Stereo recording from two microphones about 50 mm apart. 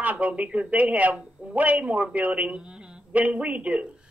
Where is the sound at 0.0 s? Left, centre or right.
Right.